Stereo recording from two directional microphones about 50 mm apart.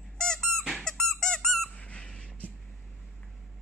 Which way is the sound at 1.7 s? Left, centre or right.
Left.